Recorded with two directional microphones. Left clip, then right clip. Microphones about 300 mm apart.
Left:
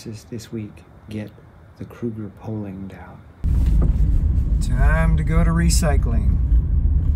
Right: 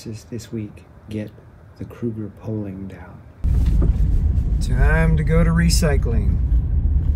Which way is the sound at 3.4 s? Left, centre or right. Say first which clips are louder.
Even; centre.